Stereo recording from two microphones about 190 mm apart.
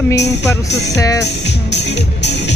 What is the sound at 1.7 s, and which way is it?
Music, 65° left (ahead or behind).